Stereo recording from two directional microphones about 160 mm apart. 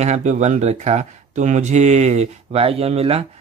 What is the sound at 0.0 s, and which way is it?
Speech, 45° right (ahead or behind).